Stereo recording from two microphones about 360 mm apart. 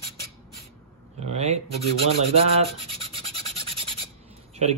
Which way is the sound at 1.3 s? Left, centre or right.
Centre.